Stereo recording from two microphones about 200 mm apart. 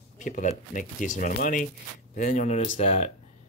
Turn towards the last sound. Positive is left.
turn(degrees=30)  # may be behind; listen again after turning